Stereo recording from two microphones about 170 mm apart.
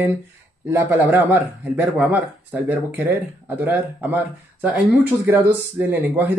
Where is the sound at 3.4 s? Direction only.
10° right (ahead or behind).